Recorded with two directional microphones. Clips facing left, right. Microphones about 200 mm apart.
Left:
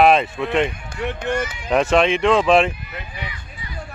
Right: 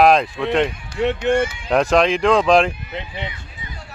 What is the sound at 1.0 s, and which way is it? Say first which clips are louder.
Speech: right 6 dB; 30° right (ahead or behind).